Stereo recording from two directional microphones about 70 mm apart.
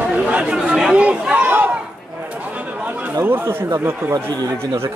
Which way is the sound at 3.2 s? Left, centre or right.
Right.